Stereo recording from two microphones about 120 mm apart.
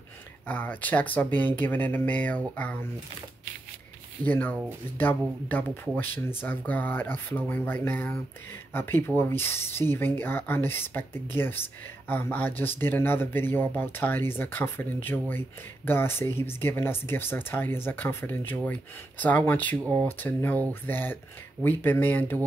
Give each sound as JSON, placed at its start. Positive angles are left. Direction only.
{"t": 0.5, "sound": "speech", "side_deg": 15}
{"t": 4.3, "sound": "speech", "side_deg": 15}